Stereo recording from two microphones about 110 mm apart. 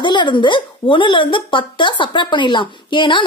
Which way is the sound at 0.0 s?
45° left (ahead or behind).